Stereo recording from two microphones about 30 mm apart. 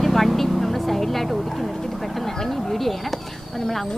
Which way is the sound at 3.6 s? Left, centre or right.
Centre.